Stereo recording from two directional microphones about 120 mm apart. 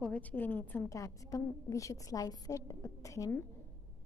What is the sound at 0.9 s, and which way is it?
A woman's voice, 25° left (ahead or behind).